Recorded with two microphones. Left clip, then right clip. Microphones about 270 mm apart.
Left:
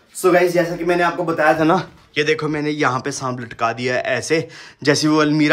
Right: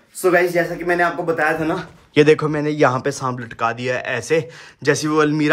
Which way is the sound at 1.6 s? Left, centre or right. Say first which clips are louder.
Left 6 dB; left.